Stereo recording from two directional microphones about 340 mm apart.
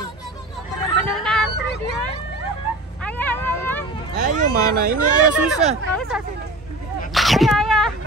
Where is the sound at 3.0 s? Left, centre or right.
Centre.